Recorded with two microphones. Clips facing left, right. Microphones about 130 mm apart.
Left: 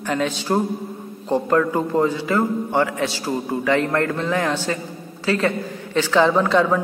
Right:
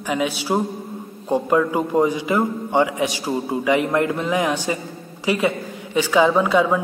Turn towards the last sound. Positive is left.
turn(degrees=-10)  # may be behind; listen again after turning